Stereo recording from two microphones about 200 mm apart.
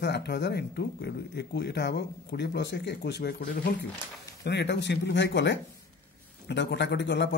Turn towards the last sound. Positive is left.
turn(degrees=60)  # may be behind; listen again after turning